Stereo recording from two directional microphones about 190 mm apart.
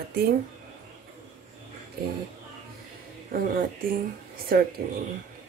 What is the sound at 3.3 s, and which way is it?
Speech, 50° right (ahead or behind).